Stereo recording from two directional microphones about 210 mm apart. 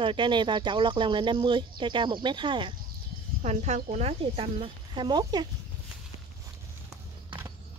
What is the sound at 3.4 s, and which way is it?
Speech, 35° right (ahead or behind).